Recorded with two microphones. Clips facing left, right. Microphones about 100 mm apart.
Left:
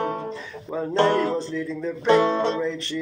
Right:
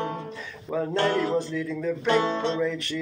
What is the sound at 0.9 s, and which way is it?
Music, 30° left (ahead or behind).